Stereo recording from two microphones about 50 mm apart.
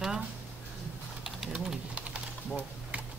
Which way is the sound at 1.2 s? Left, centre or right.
Centre.